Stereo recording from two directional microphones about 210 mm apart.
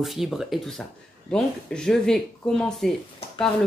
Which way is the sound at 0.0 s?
Centre (ahead or behind).